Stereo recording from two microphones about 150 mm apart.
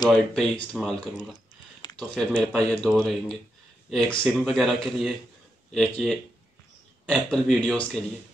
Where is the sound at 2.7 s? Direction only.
5° left (ahead or behind).